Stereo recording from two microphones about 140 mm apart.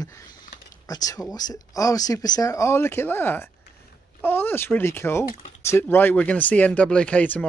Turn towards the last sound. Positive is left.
turn(degrees=10)  # may be behind; listen again after turning